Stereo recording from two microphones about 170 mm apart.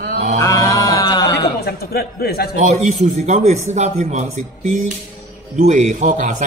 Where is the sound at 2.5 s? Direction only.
40° right (ahead or behind).